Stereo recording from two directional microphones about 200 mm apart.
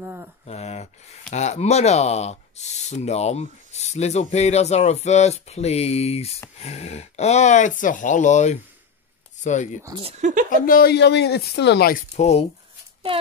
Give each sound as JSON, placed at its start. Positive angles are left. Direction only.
{"t": 0.0, "sound": "speech", "side_deg": -10}
{"t": 0.5, "sound": "a sound", "side_deg": 35}
{"t": 1.3, "sound": "speech", "side_deg": 35}
{"t": 10.0, "sound": "a woman's voice", "side_deg": -35}
{"t": 10.5, "sound": "speech", "side_deg": 45}
{"t": 12.2, "sound": "speech", "side_deg": 30}